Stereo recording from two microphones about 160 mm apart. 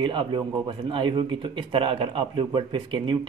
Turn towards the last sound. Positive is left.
turn(degrees=-30)  # may be behind; listen again after turning